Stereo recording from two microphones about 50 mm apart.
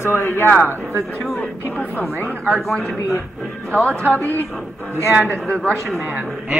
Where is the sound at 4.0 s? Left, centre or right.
Right.